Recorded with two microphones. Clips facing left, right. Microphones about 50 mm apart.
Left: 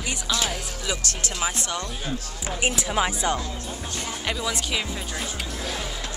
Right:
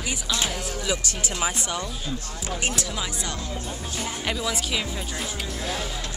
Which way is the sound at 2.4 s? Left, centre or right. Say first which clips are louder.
Left 2 dB; centre.